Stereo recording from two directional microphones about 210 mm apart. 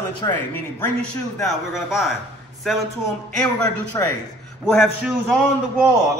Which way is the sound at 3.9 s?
15° left (ahead or behind).